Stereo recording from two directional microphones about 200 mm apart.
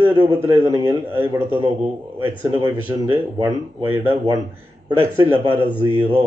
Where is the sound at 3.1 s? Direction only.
15° right (ahead or behind).